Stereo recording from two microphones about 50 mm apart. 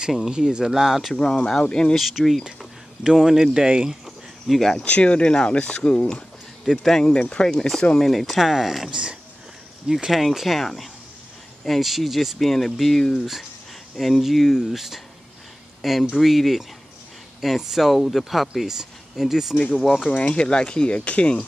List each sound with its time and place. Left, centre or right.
0.3 s speech: centre
1.1 s speech: centre
2.0 s speech: centre
3.6 s speech: centre
4.0 s cricket: centre
4.8 s speech: left
6.6 s speech: centre
7.2 s speech: left
7.4 s speech: centre
19.7 s speech: centre
20.1 s speech: left